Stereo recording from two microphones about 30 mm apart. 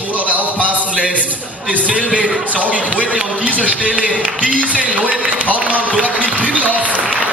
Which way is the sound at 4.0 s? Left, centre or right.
Right.